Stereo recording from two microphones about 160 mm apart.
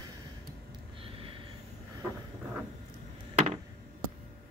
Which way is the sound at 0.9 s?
35° right (ahead or behind).